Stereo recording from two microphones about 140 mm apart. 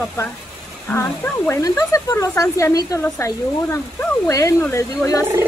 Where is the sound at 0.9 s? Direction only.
15° left (ahead or behind).